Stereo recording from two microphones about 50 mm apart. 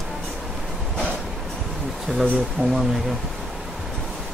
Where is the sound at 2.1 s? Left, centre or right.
Centre.